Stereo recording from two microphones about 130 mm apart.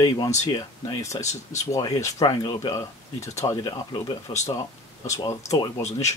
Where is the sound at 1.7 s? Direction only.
30° left (ahead or behind).